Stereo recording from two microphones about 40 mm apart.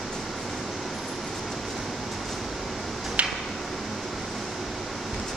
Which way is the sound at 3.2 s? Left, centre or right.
Right.